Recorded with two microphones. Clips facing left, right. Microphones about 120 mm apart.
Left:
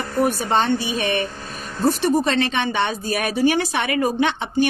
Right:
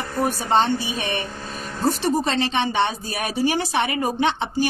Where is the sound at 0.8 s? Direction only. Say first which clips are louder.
Left 4 dB; 30° right (ahead or behind).